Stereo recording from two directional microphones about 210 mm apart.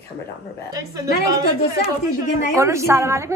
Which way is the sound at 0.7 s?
15° right (ahead or behind).